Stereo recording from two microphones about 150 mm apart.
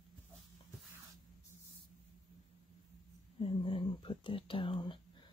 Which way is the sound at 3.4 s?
35° left (ahead or behind).